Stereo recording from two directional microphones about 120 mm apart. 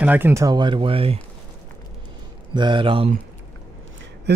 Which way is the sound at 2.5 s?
40° right (ahead or behind).